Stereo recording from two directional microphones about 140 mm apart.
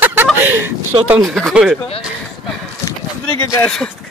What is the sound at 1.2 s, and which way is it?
Speech, 5° right (ahead or behind).